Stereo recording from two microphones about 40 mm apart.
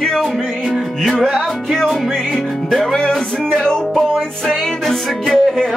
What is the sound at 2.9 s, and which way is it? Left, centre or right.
Music, centre.